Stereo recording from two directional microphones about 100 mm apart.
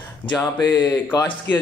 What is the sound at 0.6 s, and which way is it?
Speech, 25° left (ahead or behind).